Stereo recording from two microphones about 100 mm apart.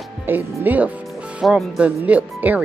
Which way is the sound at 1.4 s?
5° right (ahead or behind).